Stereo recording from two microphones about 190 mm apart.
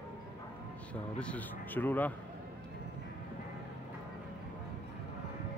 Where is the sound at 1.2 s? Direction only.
5° left (ahead or behind).